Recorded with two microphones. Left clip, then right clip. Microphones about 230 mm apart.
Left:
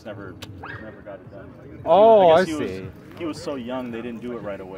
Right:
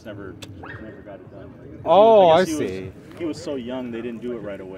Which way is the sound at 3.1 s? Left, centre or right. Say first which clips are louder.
Right 1 dB; left.